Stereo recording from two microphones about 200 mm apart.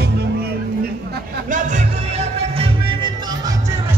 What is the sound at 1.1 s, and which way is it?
Music, 40° right (ahead or behind).